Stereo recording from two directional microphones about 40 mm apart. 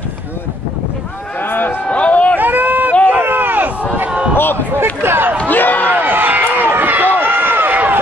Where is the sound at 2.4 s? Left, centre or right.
Right.